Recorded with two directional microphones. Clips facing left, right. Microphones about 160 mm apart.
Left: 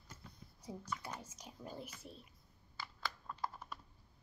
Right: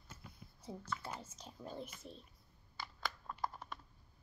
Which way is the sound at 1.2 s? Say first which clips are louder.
Right 1 dB; 15° left (ahead or behind).